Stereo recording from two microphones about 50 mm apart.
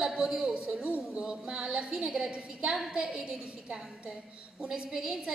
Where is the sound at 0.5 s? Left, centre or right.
Right.